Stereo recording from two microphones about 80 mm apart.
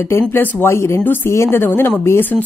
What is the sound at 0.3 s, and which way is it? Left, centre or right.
Speech, left.